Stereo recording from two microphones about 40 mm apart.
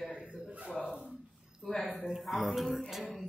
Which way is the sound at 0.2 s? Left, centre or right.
Right.